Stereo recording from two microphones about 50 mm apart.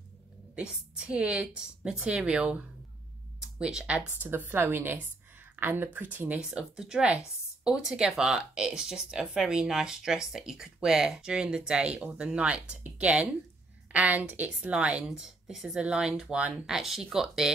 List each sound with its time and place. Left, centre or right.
0.6 s a woman's voice: right
3.3 s a sound: centre
4.2 s a woman's voice: right
6.4 s a woman's voice: centre; by 14.7 s right
14.7 s a woman's voice: right
15.0 s speech: centre
15.8 s a woman's voice: centre
16.6 s speech: centre